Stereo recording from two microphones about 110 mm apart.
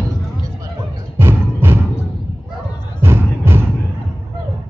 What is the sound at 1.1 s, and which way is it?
Music, 20° right (ahead or behind).